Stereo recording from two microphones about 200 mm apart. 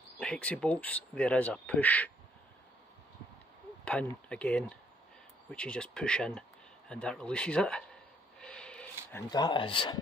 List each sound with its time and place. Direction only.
0.2 s speech: 5° left (ahead or behind)
3.8 s speech: 5° left (ahead or behind)
8.4 s a sound: 5° left (ahead or behind)
9.3 s speech: 20° left (ahead or behind)